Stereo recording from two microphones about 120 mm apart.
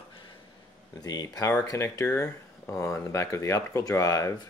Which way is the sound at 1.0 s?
30° left (ahead or behind).